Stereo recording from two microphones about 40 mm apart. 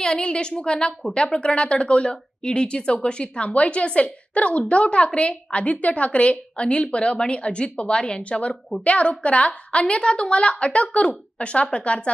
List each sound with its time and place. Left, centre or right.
0.0 s a woman's voice: left